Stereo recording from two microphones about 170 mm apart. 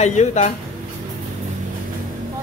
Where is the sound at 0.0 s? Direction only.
45° left (ahead or behind).